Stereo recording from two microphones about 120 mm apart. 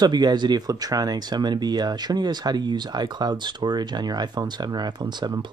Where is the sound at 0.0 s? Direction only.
35° right (ahead or behind).